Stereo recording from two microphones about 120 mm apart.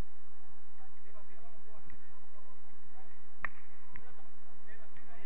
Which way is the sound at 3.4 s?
5° right (ahead or behind).